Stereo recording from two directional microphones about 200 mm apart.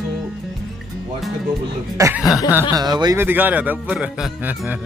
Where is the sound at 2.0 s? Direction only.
15° right (ahead or behind).